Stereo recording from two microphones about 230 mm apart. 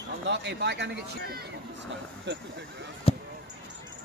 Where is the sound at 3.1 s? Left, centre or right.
Left.